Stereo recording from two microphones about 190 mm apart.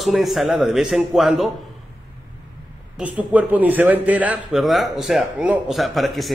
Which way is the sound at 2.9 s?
10° right (ahead or behind).